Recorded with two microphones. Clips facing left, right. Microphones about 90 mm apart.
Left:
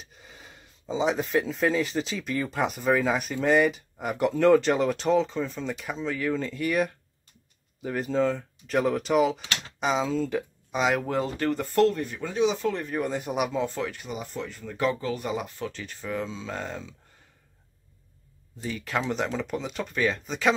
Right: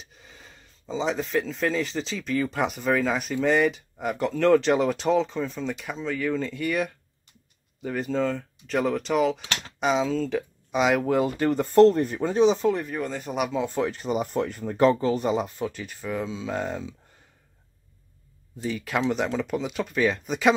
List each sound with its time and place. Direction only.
0.0 s speech: 5° left (ahead or behind); by 12.0 s 25° right (ahead or behind)
12.0 s speech: 40° right (ahead or behind)
13.0 s speech: 10° left (ahead or behind)
14.1 s speech: 50° right (ahead or behind)
15.0 s speech: 25° right (ahead or behind)
15.7 s speech: 10° right (ahead or behind)
18.6 s speech: 5° right (ahead or behind)